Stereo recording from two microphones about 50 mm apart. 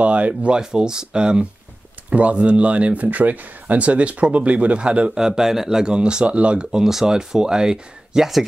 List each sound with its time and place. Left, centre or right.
0.0 s speech: right
0.6 s speech: centre